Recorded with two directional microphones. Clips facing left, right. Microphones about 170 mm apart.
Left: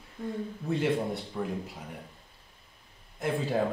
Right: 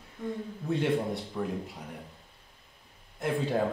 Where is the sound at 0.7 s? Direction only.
Centre (ahead or behind).